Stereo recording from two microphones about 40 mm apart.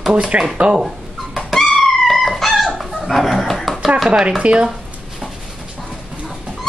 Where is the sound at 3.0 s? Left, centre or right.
Centre.